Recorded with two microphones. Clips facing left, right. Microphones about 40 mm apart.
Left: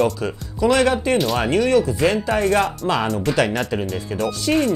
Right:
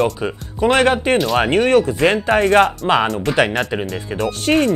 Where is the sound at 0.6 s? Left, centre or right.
Right.